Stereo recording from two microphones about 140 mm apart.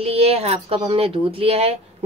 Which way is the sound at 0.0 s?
45° right (ahead or behind).